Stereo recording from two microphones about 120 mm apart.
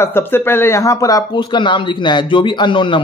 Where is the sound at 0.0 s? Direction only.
20° left (ahead or behind).